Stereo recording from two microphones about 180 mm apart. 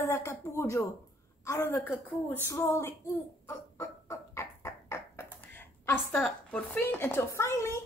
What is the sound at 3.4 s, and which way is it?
Bird, 15° left (ahead or behind).